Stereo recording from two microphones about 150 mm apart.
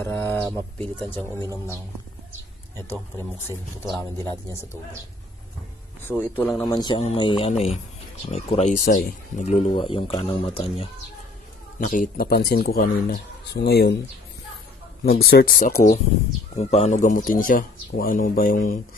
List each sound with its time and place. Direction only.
0.0 s speech: 15° left (ahead or behind)
6.1 s speech: 10° left (ahead or behind)
6.7 s speech: 30° left (ahead or behind)
8.7 s speech: 65° left (ahead or behind)
9.4 s speech: 50° left (ahead or behind)
11.8 s speech: 65° left (ahead or behind); by 13.9 s 90° left
15.0 s speech: 90° left; by 16.0 s 60° left (ahead or behind)
16.5 s speech: 50° left (ahead or behind); by 18.8 s 70° left (ahead or behind)